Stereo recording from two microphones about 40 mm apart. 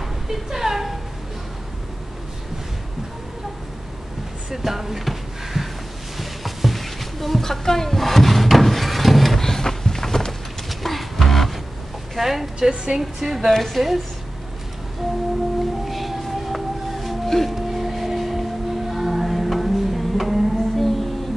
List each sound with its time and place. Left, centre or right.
0.3 s a sound: centre
4.5 s a sound: centre
10.7 s beatboxing: centre
12.2 s a woman's voice: centre
12.5 s a woman's voice: centre
13.5 s a woman's voice: centre
15.8 s music: centre